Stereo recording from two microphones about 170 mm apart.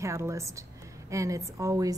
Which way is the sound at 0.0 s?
15° right (ahead or behind).